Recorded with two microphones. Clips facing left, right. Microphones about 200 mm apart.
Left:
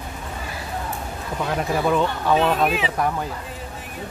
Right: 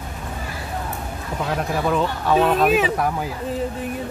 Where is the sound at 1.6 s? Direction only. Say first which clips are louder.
Left 1 dB; centre (ahead or behind).